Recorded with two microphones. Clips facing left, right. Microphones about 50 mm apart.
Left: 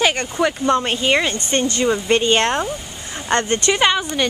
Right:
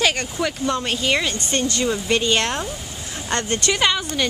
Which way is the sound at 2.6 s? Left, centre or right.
Centre.